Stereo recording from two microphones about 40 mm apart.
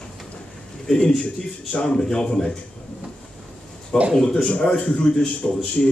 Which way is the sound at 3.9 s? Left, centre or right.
Centre.